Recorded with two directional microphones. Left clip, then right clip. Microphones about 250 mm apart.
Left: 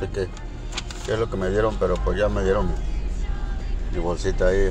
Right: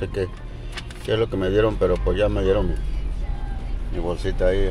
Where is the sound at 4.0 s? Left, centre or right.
Centre.